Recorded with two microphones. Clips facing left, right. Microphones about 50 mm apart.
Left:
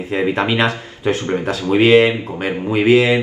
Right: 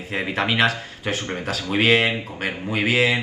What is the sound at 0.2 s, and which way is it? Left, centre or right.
Speech, left.